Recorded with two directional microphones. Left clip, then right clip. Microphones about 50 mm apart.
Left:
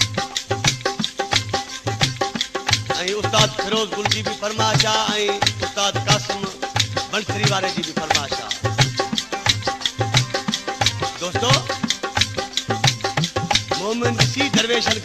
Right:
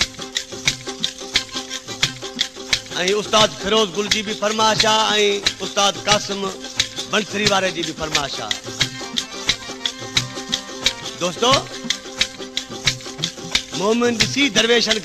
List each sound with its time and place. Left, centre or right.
0.0 s music: right